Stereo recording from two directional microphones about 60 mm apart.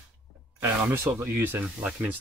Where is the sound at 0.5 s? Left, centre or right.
Right.